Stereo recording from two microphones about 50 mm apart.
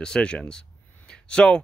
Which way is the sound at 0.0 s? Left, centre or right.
Centre.